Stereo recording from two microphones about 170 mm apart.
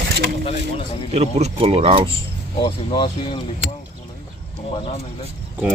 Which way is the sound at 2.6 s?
30° left (ahead or behind).